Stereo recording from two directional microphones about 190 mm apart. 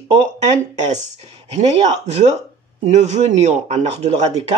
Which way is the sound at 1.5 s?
35° right (ahead or behind).